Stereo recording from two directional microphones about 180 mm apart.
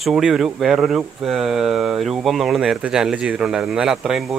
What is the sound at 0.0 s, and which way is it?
Speech, centre (ahead or behind).